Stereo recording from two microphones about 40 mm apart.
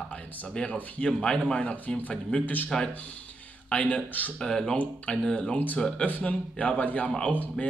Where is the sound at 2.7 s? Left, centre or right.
Centre.